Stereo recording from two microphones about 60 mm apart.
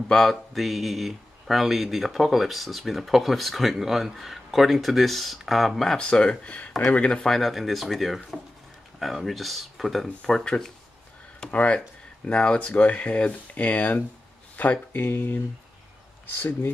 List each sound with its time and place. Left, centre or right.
0.1 s speech: centre
5.9 s speech: centre
11.5 s speech: left
16.3 s speech: left